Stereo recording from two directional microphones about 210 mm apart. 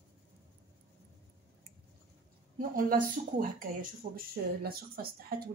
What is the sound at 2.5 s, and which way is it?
Speech, 40° right (ahead or behind).